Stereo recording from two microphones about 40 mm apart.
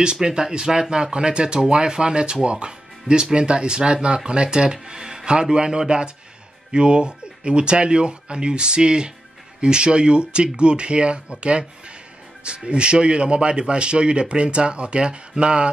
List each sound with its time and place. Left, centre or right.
0.0 s speech: centre